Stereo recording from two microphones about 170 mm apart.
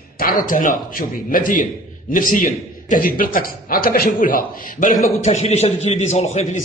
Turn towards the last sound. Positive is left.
turn(degrees=40)  # may be behind; listen again after turning